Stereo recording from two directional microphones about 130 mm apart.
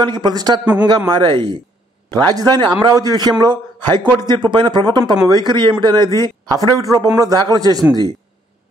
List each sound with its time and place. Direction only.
0.0 s a man's voice: 35° right (ahead or behind)